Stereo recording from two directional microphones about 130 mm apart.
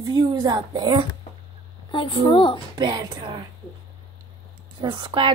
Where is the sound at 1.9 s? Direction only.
40° left (ahead or behind).